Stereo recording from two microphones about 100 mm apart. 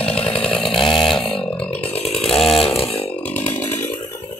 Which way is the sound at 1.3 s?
10° left (ahead or behind).